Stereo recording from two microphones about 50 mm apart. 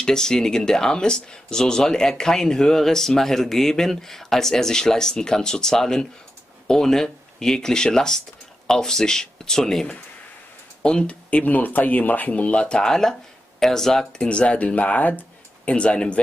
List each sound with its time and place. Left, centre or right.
0.0 s speech: centre
11.2 s speech: left